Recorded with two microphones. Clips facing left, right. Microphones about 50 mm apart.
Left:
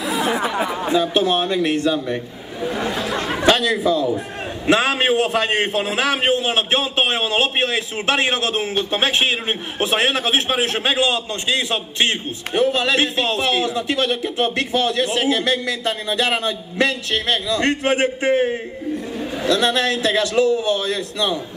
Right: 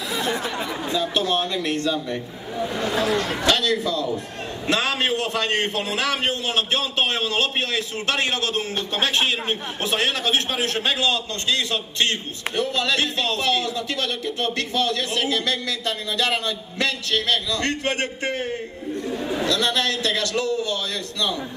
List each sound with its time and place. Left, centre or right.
0.0 s chatter: centre
0.6 s chatter: left
1.0 s speech: centre
2.9 s speech: centre
3.2 s a man's voice: centre
19.1 s chatter: centre
19.4 s a man's voice: left